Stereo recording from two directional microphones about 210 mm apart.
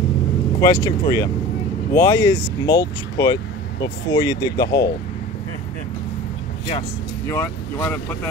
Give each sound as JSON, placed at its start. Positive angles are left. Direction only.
{"t": 0.6, "sound": "speech", "side_deg": 15}
{"t": 7.2, "sound": "speech", "side_deg": 10}